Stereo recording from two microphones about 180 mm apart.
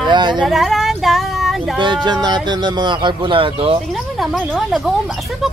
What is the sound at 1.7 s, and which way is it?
Speech, 25° right (ahead or behind).